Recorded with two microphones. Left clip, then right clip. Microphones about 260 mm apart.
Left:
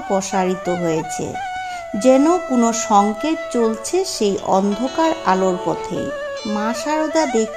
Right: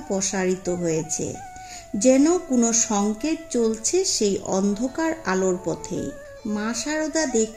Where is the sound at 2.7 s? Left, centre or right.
Centre.